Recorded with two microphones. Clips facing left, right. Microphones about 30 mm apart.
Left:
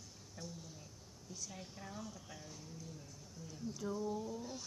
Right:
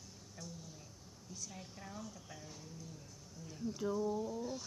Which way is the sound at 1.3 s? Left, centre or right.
Centre.